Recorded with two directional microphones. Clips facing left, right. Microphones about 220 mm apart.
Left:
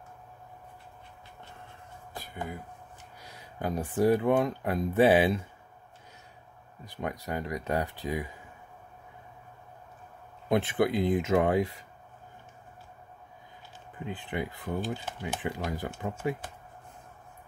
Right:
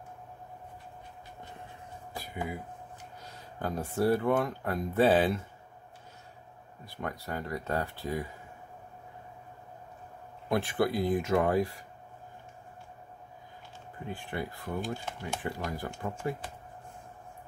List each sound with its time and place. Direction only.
2.1 s a sound: 10° right (ahead or behind)
3.5 s speech: 15° left (ahead or behind)
6.8 s speech: 15° left (ahead or behind)
10.5 s speech: 20° left (ahead or behind)
14.0 s speech: 20° left (ahead or behind)